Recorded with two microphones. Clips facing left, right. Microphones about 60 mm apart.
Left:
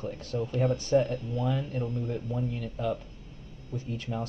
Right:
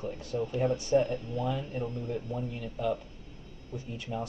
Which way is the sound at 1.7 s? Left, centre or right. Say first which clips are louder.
Left 1 dB; centre.